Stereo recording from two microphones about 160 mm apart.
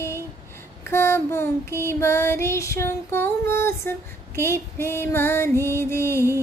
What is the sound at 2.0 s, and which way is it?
Female singing, 15° left (ahead or behind).